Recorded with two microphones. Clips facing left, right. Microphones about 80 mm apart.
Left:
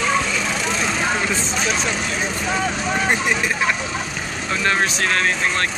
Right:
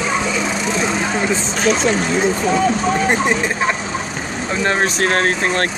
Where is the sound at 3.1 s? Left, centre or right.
Right.